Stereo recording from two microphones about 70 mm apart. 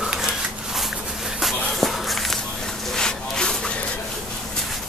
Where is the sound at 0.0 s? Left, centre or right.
Centre.